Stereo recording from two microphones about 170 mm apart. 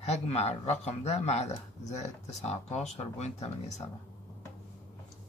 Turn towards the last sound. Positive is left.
turn(degrees=40)  # may be behind; listen again after turning